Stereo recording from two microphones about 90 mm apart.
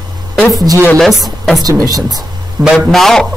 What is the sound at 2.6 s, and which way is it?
Speech, 5° right (ahead or behind).